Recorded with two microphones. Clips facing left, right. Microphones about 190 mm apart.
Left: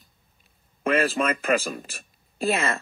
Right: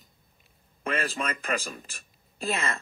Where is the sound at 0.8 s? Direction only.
70° left (ahead or behind).